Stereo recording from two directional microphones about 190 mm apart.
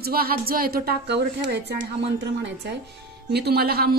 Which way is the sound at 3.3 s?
60° right (ahead or behind).